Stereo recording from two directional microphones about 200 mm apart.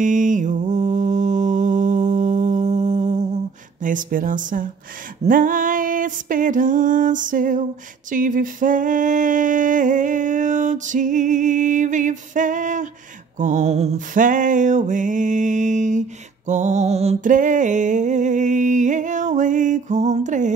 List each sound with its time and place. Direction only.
0.0 s mantra: 40° right (ahead or behind)
3.8 s music: 40° right (ahead or behind)